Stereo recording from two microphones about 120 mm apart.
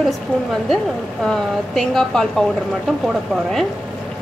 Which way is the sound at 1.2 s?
5° left (ahead or behind).